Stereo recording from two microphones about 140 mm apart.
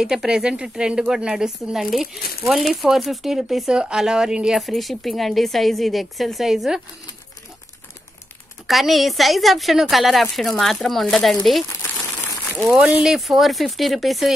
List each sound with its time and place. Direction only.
0.0 s speech: 5° right (ahead or behind)
8.6 s speech: centre (ahead or behind)
11.6 s a sound: 20° left (ahead or behind)
12.6 s speech: 5° right (ahead or behind)